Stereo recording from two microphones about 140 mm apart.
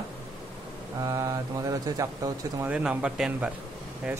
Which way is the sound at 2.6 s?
10° right (ahead or behind).